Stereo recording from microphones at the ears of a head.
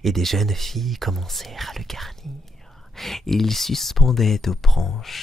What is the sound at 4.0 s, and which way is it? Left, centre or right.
Speech, left.